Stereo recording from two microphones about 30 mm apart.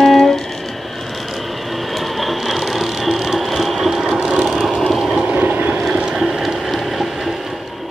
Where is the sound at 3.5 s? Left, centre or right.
Centre.